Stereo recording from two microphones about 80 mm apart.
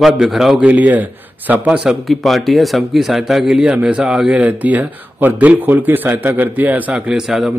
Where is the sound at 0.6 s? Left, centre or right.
Centre.